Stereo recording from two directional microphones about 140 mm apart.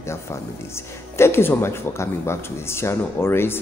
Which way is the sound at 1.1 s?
20° left (ahead or behind).